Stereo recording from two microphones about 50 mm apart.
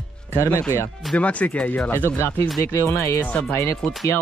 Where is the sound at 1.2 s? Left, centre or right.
Left.